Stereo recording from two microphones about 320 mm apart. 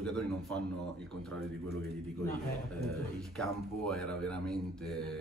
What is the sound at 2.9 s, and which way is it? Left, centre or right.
A man's voice, centre.